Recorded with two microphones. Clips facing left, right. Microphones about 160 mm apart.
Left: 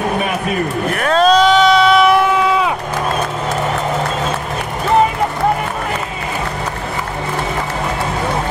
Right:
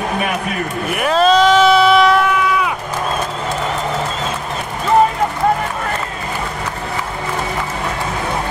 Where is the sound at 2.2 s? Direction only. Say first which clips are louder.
Left 2 dB; 25° left (ahead or behind).